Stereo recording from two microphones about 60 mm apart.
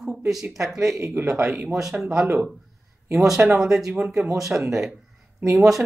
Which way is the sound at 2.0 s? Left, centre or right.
Centre.